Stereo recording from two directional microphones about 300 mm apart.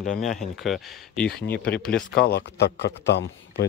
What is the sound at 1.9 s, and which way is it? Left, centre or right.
A man's voice, left.